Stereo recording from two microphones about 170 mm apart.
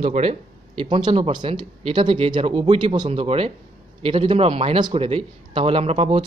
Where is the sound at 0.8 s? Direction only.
25° right (ahead or behind).